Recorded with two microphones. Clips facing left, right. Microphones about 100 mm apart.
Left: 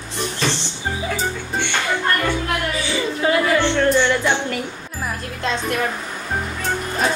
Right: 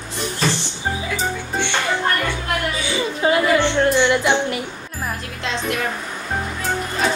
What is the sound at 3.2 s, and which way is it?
Music, 20° right (ahead or behind).